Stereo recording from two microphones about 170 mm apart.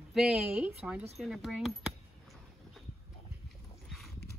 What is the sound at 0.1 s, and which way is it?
Speech, 5° right (ahead or behind).